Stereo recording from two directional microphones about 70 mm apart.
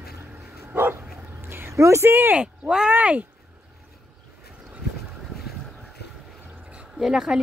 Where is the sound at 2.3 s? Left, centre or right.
Centre.